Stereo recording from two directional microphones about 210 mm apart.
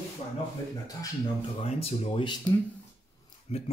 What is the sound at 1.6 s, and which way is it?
Speech, 30° left (ahead or behind).